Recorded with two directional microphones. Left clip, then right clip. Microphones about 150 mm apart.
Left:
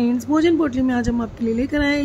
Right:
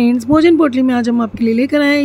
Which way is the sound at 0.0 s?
25° right (ahead or behind).